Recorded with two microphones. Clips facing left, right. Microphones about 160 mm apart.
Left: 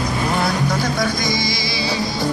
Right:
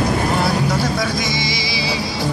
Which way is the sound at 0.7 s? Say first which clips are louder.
Right 1 dB; 5° right (ahead or behind).